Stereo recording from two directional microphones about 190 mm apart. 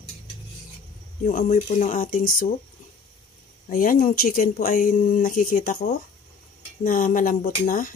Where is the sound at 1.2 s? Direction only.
45° left (ahead or behind).